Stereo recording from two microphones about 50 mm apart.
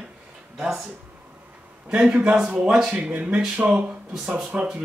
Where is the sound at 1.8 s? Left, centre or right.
Centre.